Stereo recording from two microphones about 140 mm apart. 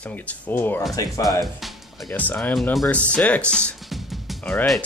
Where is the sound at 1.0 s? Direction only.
25° left (ahead or behind).